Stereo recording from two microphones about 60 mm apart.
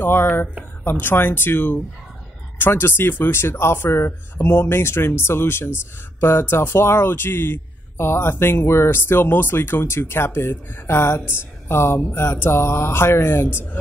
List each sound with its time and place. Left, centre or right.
0.0 s speech: left